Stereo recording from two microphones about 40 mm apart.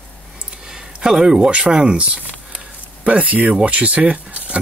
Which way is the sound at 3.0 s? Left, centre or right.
Right.